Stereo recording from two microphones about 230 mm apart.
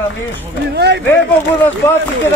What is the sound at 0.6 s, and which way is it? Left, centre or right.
Speech, right.